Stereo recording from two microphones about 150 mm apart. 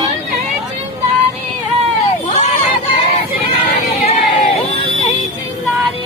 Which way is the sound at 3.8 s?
40° left (ahead or behind).